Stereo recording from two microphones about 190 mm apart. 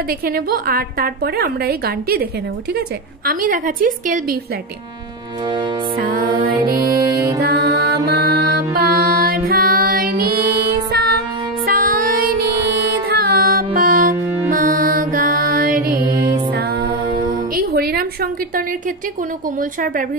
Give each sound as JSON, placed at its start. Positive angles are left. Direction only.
{"t": 0.2, "sound": "a woman's voice", "side_deg": -55}
{"t": 3.3, "sound": "a woman's voice", "side_deg": -50}
{"t": 5.9, "sound": "music", "side_deg": -50}
{"t": 7.0, "sound": "music", "side_deg": -20}
{"t": 7.3, "sound": "music", "side_deg": -55}
{"t": 11.6, "sound": "music", "side_deg": -45}
{"t": 16.1, "sound": "music", "side_deg": -20}
{"t": 16.5, "sound": "music", "side_deg": -55}
{"t": 19.6, "sound": "a woman's voice", "side_deg": -45}